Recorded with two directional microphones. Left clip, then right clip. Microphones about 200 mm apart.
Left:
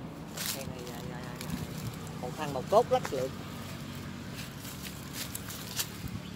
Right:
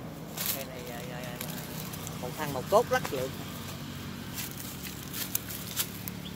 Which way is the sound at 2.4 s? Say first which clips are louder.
Even; 35° right (ahead or behind).